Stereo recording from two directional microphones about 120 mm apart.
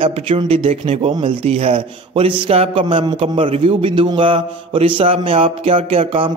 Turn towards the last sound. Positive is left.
turn(degrees=-55)  # may be behind; listen again after turning